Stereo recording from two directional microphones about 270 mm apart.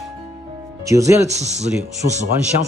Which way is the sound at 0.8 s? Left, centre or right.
Centre.